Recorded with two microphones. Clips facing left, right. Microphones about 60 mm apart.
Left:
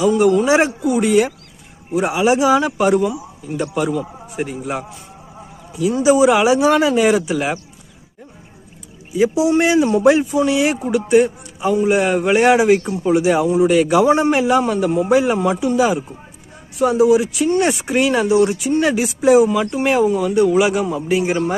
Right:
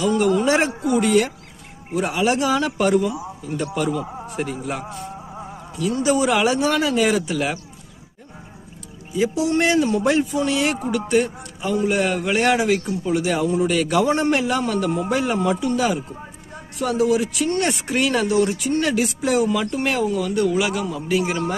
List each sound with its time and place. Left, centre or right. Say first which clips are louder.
0.0 s speech: left 4 dB; centre
9.1 s a man's voice: left 5 dB; centre